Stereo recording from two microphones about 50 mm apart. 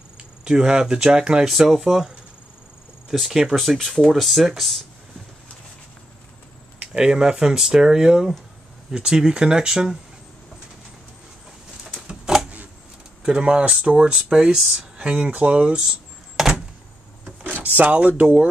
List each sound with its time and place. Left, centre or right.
0.2 s speech: centre
1.5 s speech: centre
6.9 s speech: centre
12.3 s a sound: centre
13.2 s speech: centre
17.7 s speech: right